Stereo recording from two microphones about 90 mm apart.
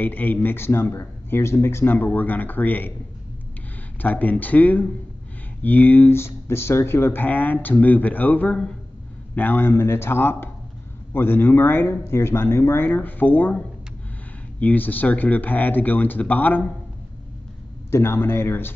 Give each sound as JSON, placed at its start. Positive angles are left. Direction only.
{"t": 0.0, "sound": "speech", "side_deg": 20}
{"t": 4.0, "sound": "speech", "side_deg": 20}
{"t": 17.9, "sound": "speech", "side_deg": 25}